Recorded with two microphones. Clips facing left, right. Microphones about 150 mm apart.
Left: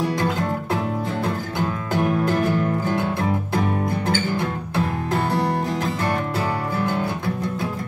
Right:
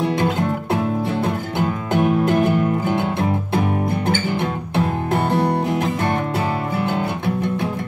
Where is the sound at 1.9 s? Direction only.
20° right (ahead or behind).